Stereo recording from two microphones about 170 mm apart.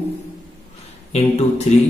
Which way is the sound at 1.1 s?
40° left (ahead or behind).